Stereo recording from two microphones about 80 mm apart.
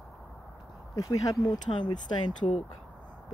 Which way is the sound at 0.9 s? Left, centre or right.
Left.